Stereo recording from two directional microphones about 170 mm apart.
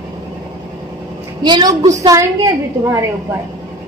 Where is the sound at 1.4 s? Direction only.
25° right (ahead or behind).